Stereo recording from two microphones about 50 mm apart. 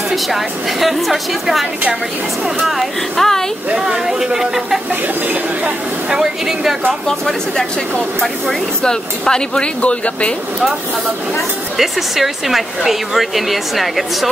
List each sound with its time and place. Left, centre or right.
0.1 s speech: centre
3.2 s speech: centre
3.7 s speech: centre
6.0 s speech: centre
7.1 s speech: centre; by 10.3 s left
11.7 s speech: centre